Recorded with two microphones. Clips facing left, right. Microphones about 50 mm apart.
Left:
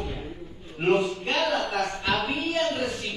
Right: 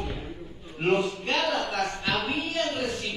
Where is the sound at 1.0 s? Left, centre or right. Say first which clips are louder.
Left 1 dB; centre.